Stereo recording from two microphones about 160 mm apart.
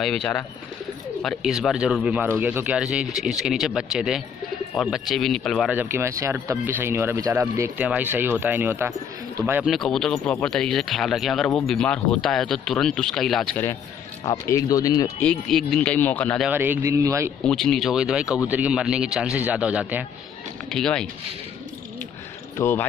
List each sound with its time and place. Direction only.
0.0 s speech: 5° left (ahead or behind)
5.7 s speech: 15° right (ahead or behind)
9.7 s speech: centre (ahead or behind)
14.5 s speech: 20° left (ahead or behind)
15.1 s speech: 5° left (ahead or behind)
16.4 s speech: 10° right (ahead or behind)
17.5 s speech: 5° left (ahead or behind)
20.7 s speech: 5° left (ahead or behind)
22.6 s speech: 15° left (ahead or behind)